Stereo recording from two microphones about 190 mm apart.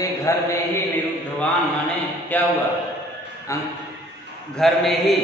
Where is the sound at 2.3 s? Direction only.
10° left (ahead or behind).